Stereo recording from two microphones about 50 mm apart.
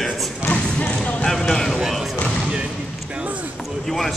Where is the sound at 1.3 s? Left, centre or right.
Centre.